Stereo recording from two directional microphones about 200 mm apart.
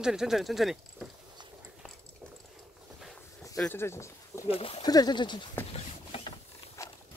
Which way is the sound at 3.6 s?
10° left (ahead or behind).